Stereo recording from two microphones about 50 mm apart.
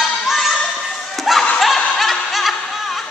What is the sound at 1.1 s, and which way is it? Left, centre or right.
Music, centre.